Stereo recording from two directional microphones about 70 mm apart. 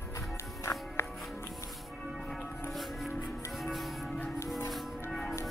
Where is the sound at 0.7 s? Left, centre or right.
Left.